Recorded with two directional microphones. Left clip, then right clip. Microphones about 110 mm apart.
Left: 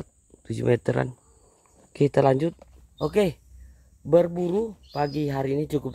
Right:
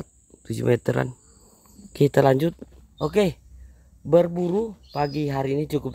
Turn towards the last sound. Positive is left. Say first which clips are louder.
# right 1 dB
turn(degrees=10)  # may be behind; listen again after turning